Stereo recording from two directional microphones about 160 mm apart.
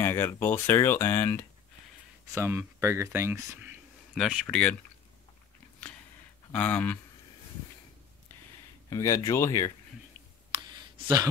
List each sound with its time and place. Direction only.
0.0 s speech: 15° left (ahead or behind)
2.3 s speech: 15° right (ahead or behind)
4.1 s speech: centre (ahead or behind)
6.5 s speech: 10° left (ahead or behind)
8.9 s speech: 20° left (ahead or behind)